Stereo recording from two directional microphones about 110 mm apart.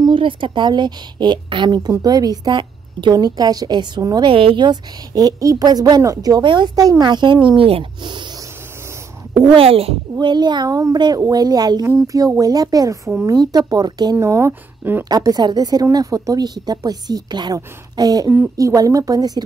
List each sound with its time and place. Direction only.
0.0 s speech: 50° right (ahead or behind)
4.3 s speech: 55° right (ahead or behind); by 6.4 s 35° right (ahead or behind)
6.4 s speech: 45° right (ahead or behind)
9.6 s speech: 60° right (ahead or behind)
10.1 s speech: 40° right (ahead or behind)
14.1 s speech: 25° right (ahead or behind)
15.0 s speech: 35° right (ahead or behind)